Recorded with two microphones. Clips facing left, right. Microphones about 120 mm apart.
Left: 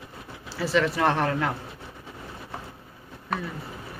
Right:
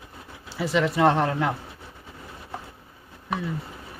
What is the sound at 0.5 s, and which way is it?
Speech, 20° right (ahead or behind).